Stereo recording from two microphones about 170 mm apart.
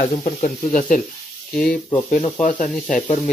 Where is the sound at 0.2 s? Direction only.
45° left (ahead or behind).